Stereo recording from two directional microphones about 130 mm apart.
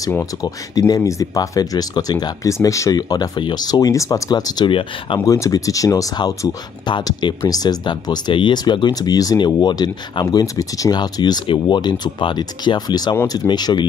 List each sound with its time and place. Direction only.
0.1 s speech: 25° left (ahead or behind)
5.2 s speech: 25° left (ahead or behind)